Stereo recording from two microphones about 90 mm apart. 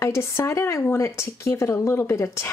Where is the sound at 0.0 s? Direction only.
30° left (ahead or behind).